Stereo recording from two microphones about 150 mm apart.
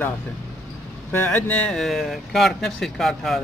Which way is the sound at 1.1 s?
15° left (ahead or behind).